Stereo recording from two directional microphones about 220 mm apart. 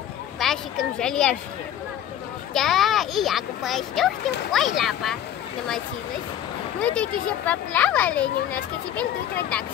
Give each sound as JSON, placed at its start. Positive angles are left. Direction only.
{"t": 0.4, "sound": "speech", "side_deg": 0}
{"t": 2.5, "sound": "speech", "side_deg": 0}
{"t": 6.8, "sound": "a child's voice", "side_deg": 5}